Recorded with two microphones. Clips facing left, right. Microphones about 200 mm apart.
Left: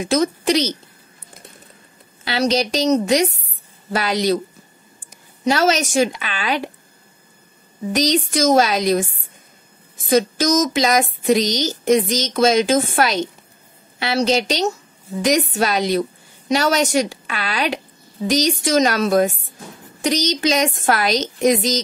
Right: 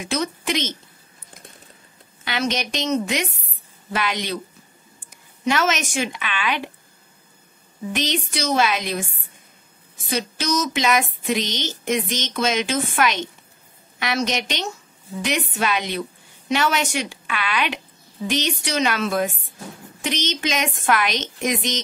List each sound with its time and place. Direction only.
0.0 s speech: 40° left (ahead or behind)
2.2 s speech: 35° left (ahead or behind)
5.4 s speech: 35° left (ahead or behind)
7.9 s speech: 40° left (ahead or behind)
10.0 s a woman's voice: 40° left (ahead or behind)